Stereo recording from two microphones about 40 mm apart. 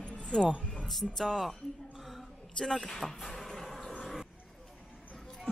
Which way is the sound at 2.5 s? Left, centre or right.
Centre.